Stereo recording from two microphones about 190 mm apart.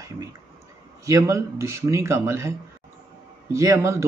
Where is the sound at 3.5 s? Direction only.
15° right (ahead or behind).